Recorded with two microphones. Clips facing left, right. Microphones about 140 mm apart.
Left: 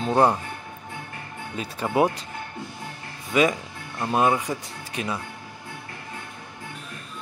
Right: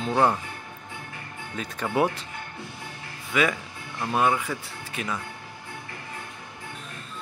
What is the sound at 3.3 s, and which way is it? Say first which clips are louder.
Speech: left 4 dB; 25° left (ahead or behind).